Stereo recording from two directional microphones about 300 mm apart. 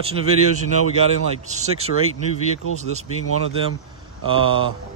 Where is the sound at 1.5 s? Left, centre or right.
Right.